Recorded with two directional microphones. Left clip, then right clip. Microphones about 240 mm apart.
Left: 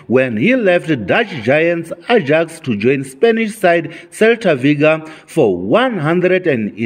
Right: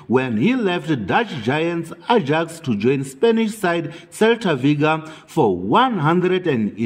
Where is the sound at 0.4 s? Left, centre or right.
Right.